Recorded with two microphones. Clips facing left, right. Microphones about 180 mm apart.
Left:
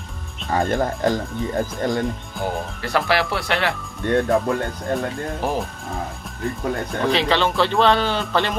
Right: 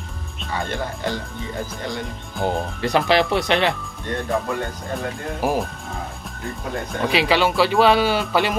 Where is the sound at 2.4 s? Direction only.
20° right (ahead or behind).